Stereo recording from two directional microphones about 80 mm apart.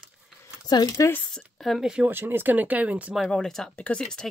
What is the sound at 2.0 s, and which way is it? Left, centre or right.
Speech, right.